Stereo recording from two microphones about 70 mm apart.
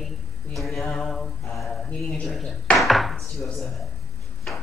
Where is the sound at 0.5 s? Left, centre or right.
Centre.